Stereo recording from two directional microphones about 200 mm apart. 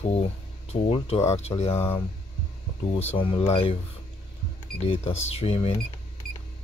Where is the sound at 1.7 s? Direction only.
10° left (ahead or behind).